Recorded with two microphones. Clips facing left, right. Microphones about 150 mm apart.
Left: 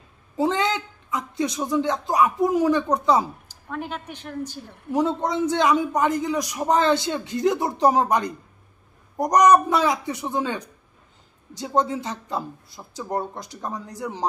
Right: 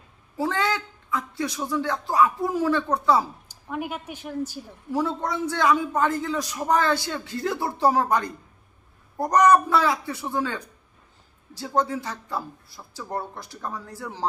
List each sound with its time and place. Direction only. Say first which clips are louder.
0.4 s a man's voice: left 3 dB; 20° left (ahead or behind)
3.4 s speech: right 1 dB; 10° right (ahead or behind)
4.9 s a man's voice: left 4 dB; 20° left (ahead or behind)